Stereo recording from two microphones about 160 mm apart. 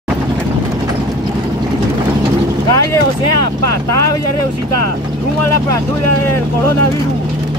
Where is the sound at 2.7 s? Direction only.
20° left (ahead or behind).